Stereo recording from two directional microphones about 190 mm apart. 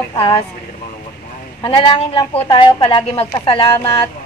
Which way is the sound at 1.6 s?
25° left (ahead or behind).